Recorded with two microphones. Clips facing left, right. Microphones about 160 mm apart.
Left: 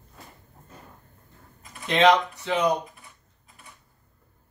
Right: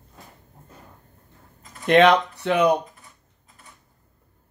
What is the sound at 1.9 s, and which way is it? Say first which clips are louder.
Speech: right 4 dB; 60° right (ahead or behind).